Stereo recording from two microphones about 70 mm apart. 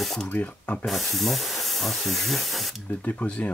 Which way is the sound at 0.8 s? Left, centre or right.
Centre.